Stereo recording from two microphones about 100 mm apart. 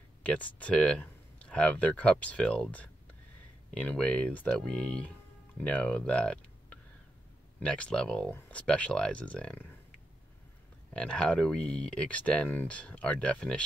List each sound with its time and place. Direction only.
0.2 s speech: 15° left (ahead or behind)
10.9 s speech: 10° left (ahead or behind)